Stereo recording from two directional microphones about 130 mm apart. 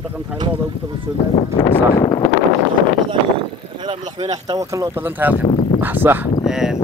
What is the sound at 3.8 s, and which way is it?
Speech, 30° right (ahead or behind).